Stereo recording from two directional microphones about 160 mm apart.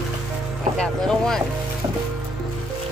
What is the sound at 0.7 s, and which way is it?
Speech, 5° left (ahead or behind).